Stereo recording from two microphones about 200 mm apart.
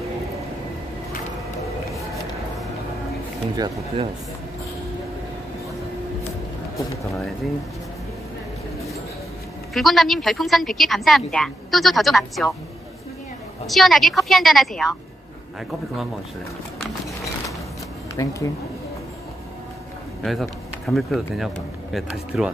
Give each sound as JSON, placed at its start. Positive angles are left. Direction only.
{"t": 3.5, "sound": "speech", "side_deg": -20}
{"t": 7.1, "sound": "a woman's voice", "side_deg": 0}
{"t": 9.8, "sound": "a woman's voice", "side_deg": 0}
{"t": 13.7, "sound": "a woman's voice", "side_deg": 0}
{"t": 18.1, "sound": "speech", "side_deg": 15}
{"t": 20.2, "sound": "speech", "side_deg": 0}